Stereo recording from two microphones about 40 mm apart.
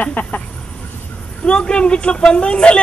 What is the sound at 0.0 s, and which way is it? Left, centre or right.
Chicken, left.